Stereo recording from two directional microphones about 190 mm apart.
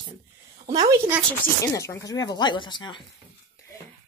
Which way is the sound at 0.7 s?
20° right (ahead or behind).